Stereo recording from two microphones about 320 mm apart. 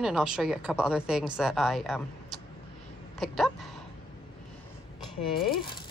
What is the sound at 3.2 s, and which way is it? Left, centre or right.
Speech, centre.